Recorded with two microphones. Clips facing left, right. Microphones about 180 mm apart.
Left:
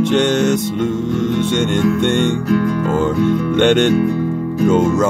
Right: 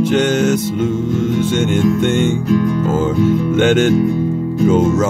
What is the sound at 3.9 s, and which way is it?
Speech, 65° left (ahead or behind).